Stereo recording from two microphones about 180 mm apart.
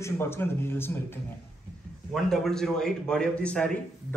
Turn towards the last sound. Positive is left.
turn(degrees=5)  # may be behind; listen again after turning